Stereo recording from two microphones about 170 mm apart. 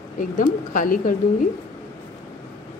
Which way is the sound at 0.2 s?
55° left (ahead or behind).